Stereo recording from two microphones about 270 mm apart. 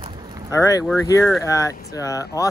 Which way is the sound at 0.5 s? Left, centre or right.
Centre.